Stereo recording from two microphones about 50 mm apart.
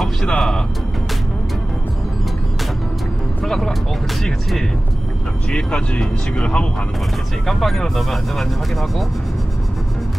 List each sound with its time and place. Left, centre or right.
0.3 s speech: centre
3.4 s speech: centre
5.5 s speech: centre
7.4 s speech: centre